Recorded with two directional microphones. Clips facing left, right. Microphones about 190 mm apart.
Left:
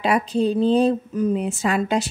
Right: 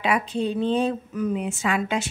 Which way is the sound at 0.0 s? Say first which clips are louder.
Left 4 dB; 35° left (ahead or behind).